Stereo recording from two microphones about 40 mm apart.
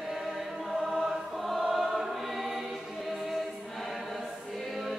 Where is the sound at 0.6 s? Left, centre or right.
Right.